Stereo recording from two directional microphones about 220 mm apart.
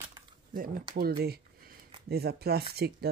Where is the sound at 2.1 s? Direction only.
45° right (ahead or behind).